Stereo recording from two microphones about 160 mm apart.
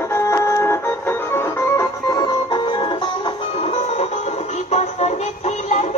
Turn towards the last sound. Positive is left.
turn(degrees=45)  # may be behind; listen again after turning